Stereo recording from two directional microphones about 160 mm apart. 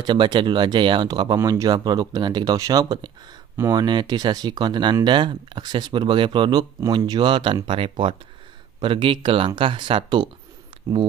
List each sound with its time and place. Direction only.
0.0 s speech: 30° right (ahead or behind)